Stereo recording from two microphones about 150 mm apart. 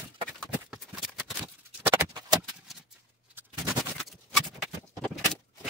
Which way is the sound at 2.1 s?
25° right (ahead or behind).